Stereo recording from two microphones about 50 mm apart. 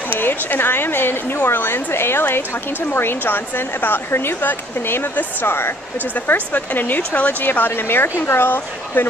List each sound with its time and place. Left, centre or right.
0.2 s a woman's voice: left
6.1 s speech: left